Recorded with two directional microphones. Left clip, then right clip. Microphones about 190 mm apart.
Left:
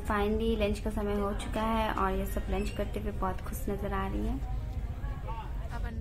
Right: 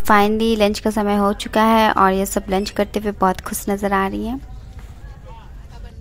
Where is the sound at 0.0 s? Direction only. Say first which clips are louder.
Right 16 dB; 60° right (ahead or behind).